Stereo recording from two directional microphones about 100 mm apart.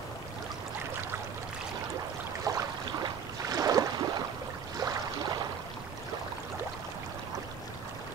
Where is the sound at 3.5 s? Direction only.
35° right (ahead or behind).